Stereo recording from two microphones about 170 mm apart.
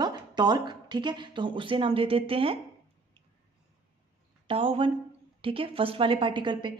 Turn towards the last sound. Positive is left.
turn(degrees=-30)  # may be behind; listen again after turning